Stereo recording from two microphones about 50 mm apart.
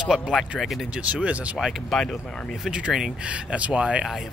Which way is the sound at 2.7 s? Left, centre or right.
Centre.